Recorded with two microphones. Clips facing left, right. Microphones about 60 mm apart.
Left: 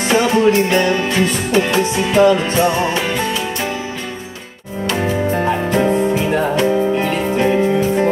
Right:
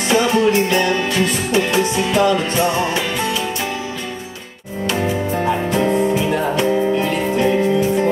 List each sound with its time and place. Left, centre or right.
0.1 s music: left
5.3 s music: left
5.9 s music: left